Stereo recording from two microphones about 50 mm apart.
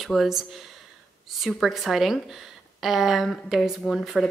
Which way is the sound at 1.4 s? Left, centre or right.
Centre.